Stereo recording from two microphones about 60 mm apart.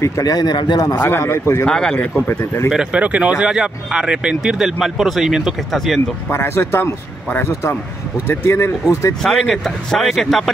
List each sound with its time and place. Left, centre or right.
0.0 s a man's voice: left
1.0 s a man's voice: left
1.7 s speech: centre
2.2 s a man's voice: left
2.7 s speech: centre
3.0 s speech: right; by 5.9 s centre
6.3 s a man's voice: left
8.5 s a man's voice: left
9.2 s speech: centre